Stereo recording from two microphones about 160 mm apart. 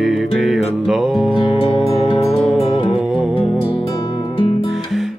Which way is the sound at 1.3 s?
30° left (ahead or behind).